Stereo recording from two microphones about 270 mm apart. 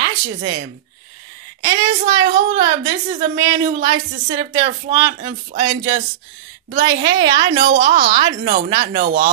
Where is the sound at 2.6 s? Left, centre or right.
Centre.